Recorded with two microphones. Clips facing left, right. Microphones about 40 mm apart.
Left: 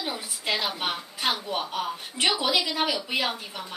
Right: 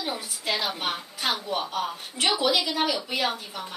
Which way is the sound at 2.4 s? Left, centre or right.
Centre.